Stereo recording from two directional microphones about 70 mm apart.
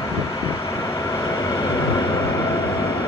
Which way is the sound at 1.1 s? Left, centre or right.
Left.